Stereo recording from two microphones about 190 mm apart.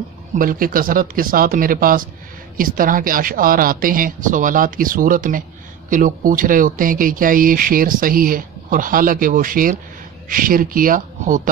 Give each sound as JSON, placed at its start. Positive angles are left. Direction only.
{"t": 0.4, "sound": "speech", "side_deg": -45}